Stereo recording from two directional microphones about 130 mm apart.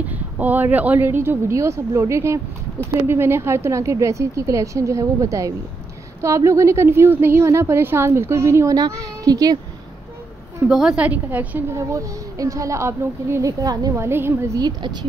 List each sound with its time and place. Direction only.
0.1 s a woman's voice: 15° right (ahead or behind); by 9.6 s 30° right (ahead or behind)
10.7 s speech: 5° right (ahead or behind)
11.9 s a woman's voice: 25° right (ahead or behind)
14.8 s speech: 35° right (ahead or behind)